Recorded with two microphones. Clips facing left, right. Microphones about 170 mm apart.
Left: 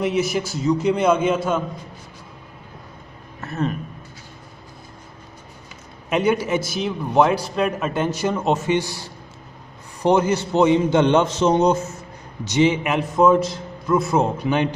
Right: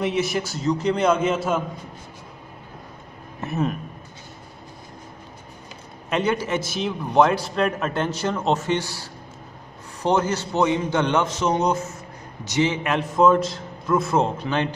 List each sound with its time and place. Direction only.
0.0 s a man's voice: centre (ahead or behind)
3.4 s speech: 5° right (ahead or behind)
6.0 s a man's voice: 10° left (ahead or behind)